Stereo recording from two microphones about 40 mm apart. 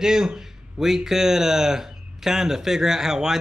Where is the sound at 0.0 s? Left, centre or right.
Centre.